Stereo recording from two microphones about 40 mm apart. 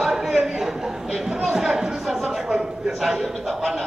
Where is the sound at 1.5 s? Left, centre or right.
Centre.